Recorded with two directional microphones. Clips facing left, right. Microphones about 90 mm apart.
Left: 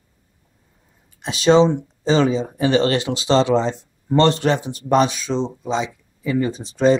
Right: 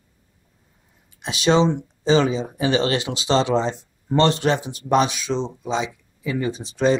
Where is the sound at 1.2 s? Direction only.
10° right (ahead or behind).